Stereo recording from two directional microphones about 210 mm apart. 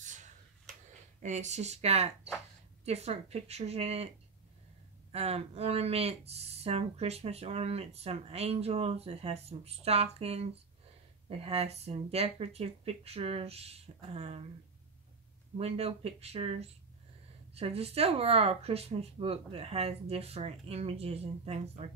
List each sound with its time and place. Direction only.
0.0 s a sound: 35° right (ahead or behind)
1.2 s speech: 35° right (ahead or behind)
5.1 s speech: 30° right (ahead or behind)
15.5 s speech: 30° right (ahead or behind)